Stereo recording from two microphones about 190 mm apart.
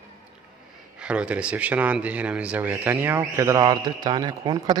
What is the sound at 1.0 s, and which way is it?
A man's voice, 5° right (ahead or behind).